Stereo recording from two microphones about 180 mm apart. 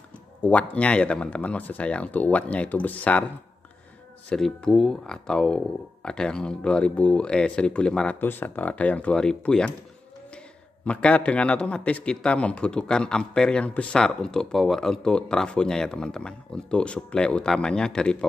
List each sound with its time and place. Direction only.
0.4 s speech: 5° left (ahead or behind)
4.3 s a man's voice: 5° left (ahead or behind)
10.9 s a man's voice: 5° left (ahead or behind)